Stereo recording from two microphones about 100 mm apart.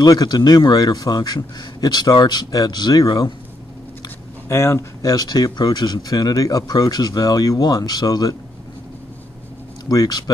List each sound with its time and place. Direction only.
0.0 s a man's voice: 40° left (ahead or behind)
4.5 s speech: 30° left (ahead or behind)
9.8 s speech: 40° left (ahead or behind)